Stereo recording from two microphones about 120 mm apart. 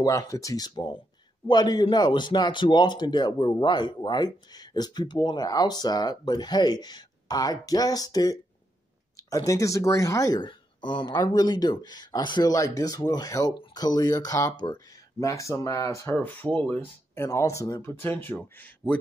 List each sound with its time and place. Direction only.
0.0 s speech: 30° left (ahead or behind)
16.2 s speech: 15° left (ahead or behind)